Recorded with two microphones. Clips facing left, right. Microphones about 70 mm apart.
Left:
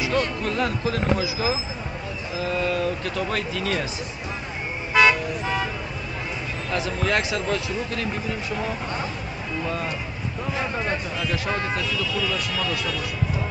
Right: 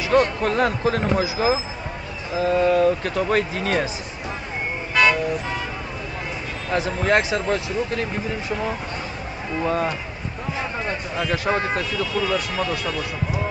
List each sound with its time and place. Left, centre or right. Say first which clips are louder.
0.0 s speech: right 5 dB; right
6.7 s speech: right 4 dB; right
9.6 s speech: right 6 dB; right
11.1 s speech: right 4 dB; right